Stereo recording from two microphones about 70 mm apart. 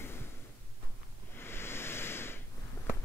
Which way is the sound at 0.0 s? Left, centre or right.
Left.